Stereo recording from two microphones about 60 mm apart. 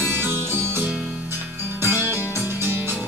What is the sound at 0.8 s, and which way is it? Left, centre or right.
Music, centre.